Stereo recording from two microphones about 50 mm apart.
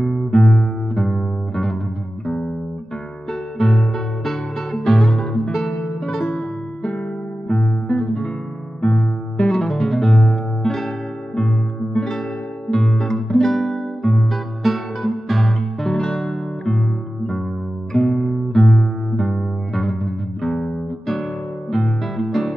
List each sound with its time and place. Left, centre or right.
0.0 s music: centre
3.5 s music: centre
6.2 s music: left
7.4 s guitar: left
8.8 s music: centre
15.9 s music: centre
17.9 s music: centre
21.7 s music: centre